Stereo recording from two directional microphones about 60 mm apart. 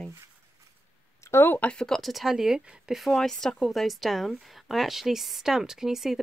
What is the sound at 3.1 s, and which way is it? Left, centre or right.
Speech, centre.